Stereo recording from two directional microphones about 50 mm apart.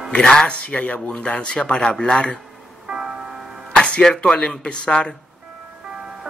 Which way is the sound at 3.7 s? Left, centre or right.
Centre.